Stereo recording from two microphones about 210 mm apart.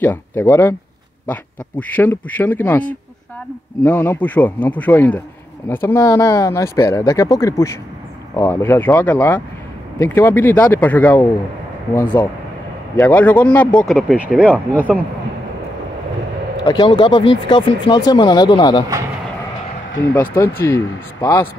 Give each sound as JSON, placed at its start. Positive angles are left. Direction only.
{"t": 0.0, "sound": "speech", "side_deg": 10}
{"t": 3.8, "sound": "speech", "side_deg": 10}
{"t": 16.6, "sound": "speech", "side_deg": 20}
{"t": 20.2, "sound": "speech", "side_deg": 10}